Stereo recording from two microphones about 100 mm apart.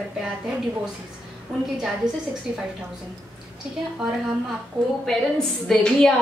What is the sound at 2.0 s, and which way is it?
Speech, 45° right (ahead or behind).